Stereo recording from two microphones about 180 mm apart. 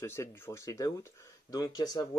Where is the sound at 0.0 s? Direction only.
15° left (ahead or behind).